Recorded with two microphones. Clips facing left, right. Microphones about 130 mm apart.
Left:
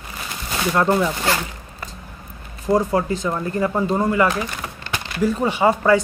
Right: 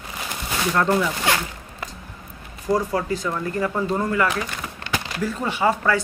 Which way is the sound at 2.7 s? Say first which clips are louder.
Left 3 dB; 25° left (ahead or behind).